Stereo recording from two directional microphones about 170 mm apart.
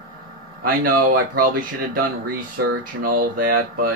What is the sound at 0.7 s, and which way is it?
Speech, 60° right (ahead or behind).